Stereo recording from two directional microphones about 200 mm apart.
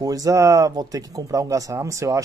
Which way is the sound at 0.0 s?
20° right (ahead or behind).